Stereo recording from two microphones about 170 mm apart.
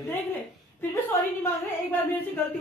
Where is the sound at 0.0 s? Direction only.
15° left (ahead or behind).